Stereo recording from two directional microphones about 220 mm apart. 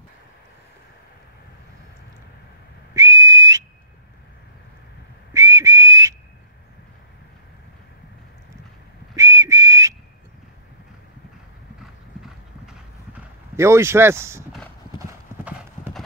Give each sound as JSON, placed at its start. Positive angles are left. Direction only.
{"t": 2.9, "sound": "whistle", "side_deg": -15}
{"t": 5.3, "sound": "whistle", "side_deg": -15}
{"t": 9.1, "sound": "whistle", "side_deg": -15}
{"t": 11.8, "sound": "clip-clop", "side_deg": 0}